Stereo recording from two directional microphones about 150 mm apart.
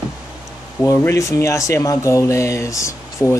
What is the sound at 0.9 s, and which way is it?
Speech, 20° left (ahead or behind).